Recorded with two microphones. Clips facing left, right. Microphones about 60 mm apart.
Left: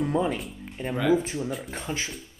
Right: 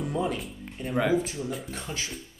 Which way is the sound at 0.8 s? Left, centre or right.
Left.